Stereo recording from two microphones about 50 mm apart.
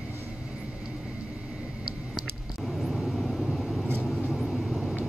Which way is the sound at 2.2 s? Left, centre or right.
Centre.